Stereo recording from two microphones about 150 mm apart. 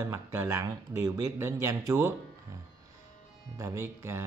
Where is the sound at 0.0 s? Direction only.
20° right (ahead or behind).